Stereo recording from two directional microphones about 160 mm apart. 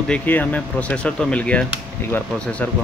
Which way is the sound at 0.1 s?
10° left (ahead or behind).